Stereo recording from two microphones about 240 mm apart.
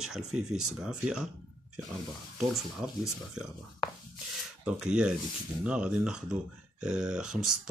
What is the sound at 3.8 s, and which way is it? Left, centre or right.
Rub, centre.